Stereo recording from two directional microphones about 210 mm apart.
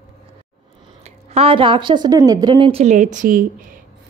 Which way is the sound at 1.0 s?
30° right (ahead or behind).